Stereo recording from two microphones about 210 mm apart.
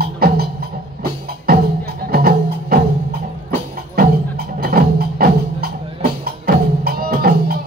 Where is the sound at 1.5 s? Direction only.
45° right (ahead or behind).